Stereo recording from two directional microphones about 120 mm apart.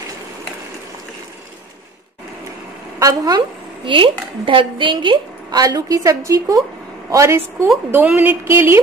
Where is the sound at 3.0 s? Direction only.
35° right (ahead or behind).